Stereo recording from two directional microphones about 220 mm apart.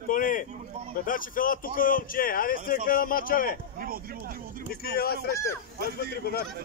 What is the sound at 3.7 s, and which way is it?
Speech, 40° right (ahead or behind).